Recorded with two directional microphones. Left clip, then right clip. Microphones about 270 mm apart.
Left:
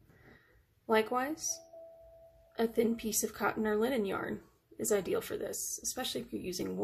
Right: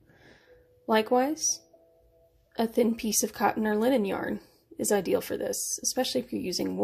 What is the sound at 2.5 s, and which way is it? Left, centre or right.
Speech, centre.